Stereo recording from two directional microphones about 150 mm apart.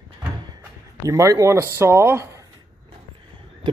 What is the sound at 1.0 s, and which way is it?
Speech, 20° right (ahead or behind).